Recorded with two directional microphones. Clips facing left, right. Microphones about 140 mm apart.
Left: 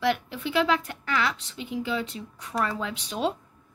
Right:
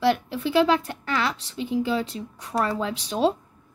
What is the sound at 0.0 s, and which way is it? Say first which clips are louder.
A woman's voice: right 4 dB; 35° right (ahead or behind).